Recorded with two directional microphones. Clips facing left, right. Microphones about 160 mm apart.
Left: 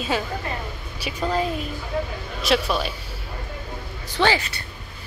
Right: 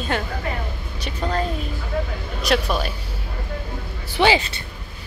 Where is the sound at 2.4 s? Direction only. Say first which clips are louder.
Even; centre (ahead or behind).